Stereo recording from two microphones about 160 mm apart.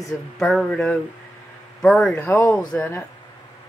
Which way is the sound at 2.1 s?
15° left (ahead or behind).